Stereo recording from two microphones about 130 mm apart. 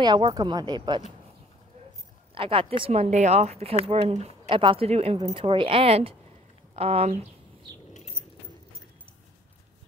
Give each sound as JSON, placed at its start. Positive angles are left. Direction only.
{"t": 0.0, "sound": "speech", "side_deg": -35}
{"t": 2.3, "sound": "speech", "side_deg": -45}
{"t": 2.9, "sound": "a woman's voice", "side_deg": -60}